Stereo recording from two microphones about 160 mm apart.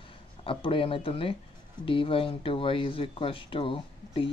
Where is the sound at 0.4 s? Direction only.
35° left (ahead or behind).